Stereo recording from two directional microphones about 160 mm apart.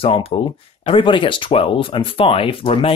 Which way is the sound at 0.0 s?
35° left (ahead or behind).